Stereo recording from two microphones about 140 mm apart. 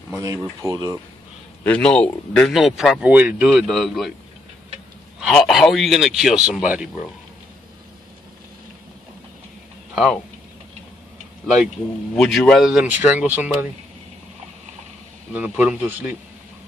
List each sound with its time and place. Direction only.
0.1 s speech: 25° right (ahead or behind)
1.6 s speech: 10° left (ahead or behind); by 3.6 s 10° right (ahead or behind)
3.6 s speech: centre (ahead or behind)
5.2 s speech: centre (ahead or behind)
9.9 s speech: centre (ahead or behind)
12.2 s speech: 5° left (ahead or behind)
15.3 s speech: 10° right (ahead or behind)